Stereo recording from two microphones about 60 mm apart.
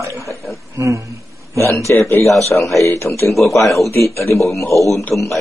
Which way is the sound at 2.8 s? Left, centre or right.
Left.